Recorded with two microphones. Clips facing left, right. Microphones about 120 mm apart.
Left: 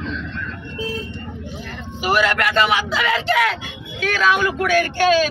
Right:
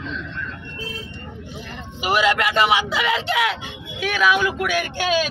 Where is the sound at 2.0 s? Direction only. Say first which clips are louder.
Left 1 dB; 20° right (ahead or behind).